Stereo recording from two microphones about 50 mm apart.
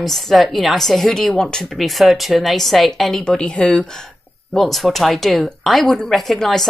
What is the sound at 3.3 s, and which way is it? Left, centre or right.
Speech, centre.